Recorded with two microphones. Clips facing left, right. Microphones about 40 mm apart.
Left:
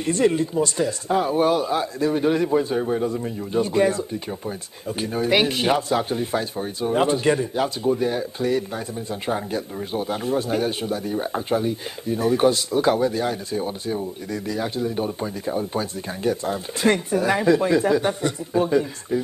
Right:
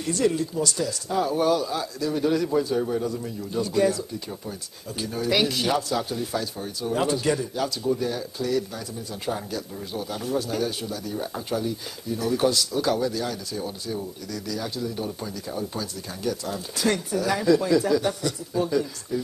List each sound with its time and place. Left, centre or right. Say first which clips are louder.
0.0 s speech: left 4 dB; left